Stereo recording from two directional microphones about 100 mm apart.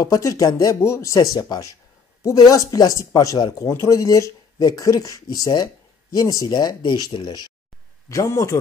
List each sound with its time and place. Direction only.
0.0 s speech: 35° left (ahead or behind)
6.8 s speech: 50° left (ahead or behind)
8.1 s speech: 30° left (ahead or behind)